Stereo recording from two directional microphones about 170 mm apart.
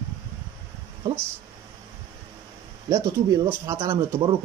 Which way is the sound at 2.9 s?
20° right (ahead or behind).